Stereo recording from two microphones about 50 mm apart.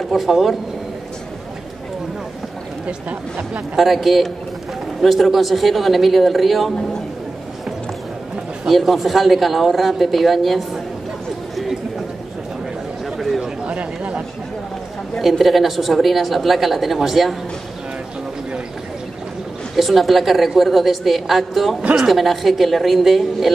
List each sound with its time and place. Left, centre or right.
0.1 s speech: centre
3.7 s speech: centre
8.6 s speech: centre
11.5 s a sound: centre
13.0 s chatter: centre
13.7 s chatter: right
15.2 s speech: centre
19.7 s speech: centre